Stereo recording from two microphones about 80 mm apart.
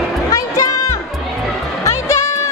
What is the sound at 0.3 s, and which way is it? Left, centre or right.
Music, left.